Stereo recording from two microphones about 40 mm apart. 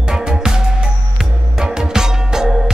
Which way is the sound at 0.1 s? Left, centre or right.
Centre.